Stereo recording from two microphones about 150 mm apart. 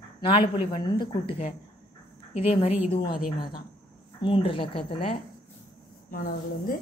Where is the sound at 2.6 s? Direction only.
40° left (ahead or behind).